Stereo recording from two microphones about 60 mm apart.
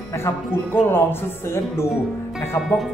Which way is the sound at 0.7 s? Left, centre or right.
Left.